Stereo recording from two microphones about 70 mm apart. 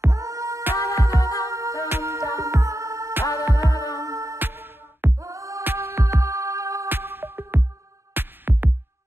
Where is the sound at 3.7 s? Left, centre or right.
Left.